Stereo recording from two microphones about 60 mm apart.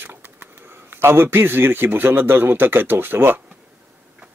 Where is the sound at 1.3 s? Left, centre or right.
Right.